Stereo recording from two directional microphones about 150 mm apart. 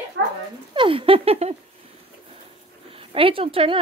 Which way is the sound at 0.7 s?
35° right (ahead or behind).